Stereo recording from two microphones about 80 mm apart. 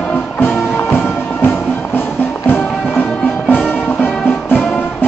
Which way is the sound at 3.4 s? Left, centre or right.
Left.